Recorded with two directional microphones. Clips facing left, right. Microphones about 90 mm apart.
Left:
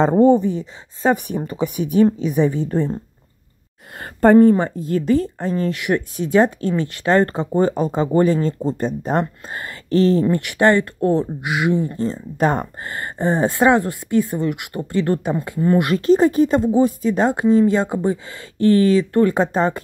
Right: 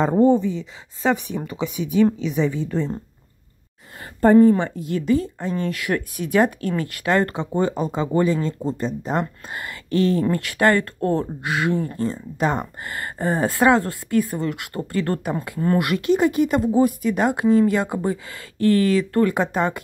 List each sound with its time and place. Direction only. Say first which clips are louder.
0.2 s a woman's voice: left 3 dB; 60° left (ahead or behind)
4.0 s speech: left 2 dB; 65° left (ahead or behind)
4.6 s speech: left 4 dB; 35° left (ahead or behind)
5.8 s a woman's voice: left 4 dB; 25° left (ahead or behind)
10.3 s a woman's voice: left 3 dB; 20° left (ahead or behind)
12.4 s speech: left 4 dB; 40° left (ahead or behind)
12.9 s a woman's voice: left 3 dB; 25° left (ahead or behind)